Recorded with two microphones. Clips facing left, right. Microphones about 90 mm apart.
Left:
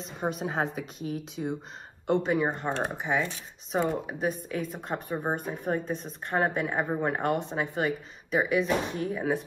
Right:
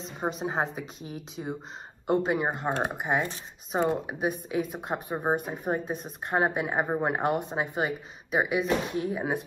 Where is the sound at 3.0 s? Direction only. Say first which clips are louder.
Even; 55° right (ahead or behind).